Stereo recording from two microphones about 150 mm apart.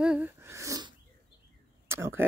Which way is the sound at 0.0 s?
5° right (ahead or behind).